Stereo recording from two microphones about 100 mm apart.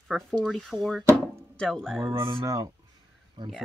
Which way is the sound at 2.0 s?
30° right (ahead or behind).